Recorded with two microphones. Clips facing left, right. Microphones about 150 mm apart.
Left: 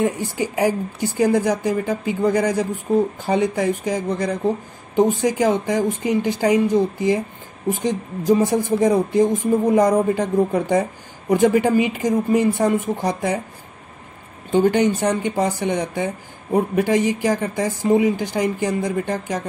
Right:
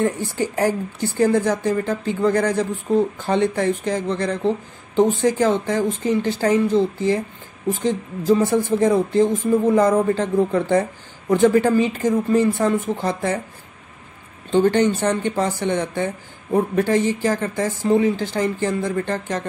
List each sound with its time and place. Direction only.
0.0 s speech: 10° left (ahead or behind)
14.5 s speech: 10° left (ahead or behind)